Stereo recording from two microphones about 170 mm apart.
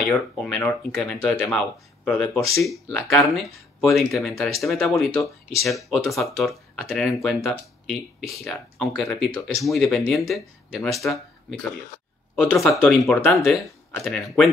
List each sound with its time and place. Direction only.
0.4 s speech: 5° left (ahead or behind)
5.1 s speech: 20° left (ahead or behind)
5.7 s speech: centre (ahead or behind)
12.4 s speech: 5° left (ahead or behind)